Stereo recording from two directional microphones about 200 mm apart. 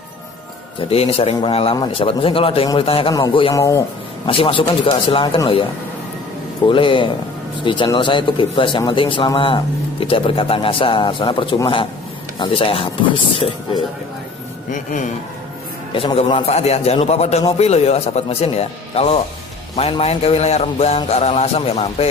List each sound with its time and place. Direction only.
0.7 s a man's voice: 30° left (ahead or behind)
6.7 s a man's voice: 25° left (ahead or behind)
14.7 s a man's voice: 40° left (ahead or behind)
15.9 s a man's voice: 25° left (ahead or behind)